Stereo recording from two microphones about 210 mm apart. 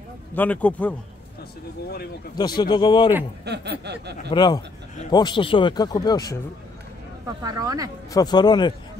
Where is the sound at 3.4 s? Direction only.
55° right (ahead or behind).